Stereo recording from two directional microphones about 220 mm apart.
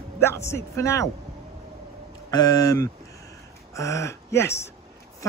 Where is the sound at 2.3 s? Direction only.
15° left (ahead or behind).